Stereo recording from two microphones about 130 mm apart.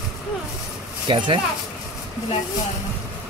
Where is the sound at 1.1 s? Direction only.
40° right (ahead or behind).